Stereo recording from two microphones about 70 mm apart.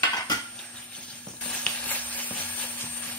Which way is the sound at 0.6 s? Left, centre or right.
Centre.